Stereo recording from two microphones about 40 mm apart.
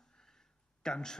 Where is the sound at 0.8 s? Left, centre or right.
Centre.